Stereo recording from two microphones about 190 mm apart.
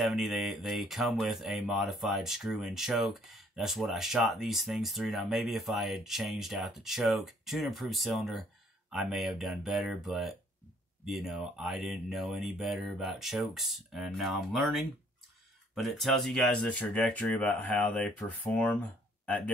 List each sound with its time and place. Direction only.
0.0 s speech: centre (ahead or behind)